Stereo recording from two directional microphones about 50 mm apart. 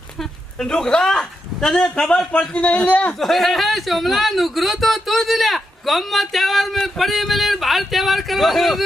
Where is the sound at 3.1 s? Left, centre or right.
Centre.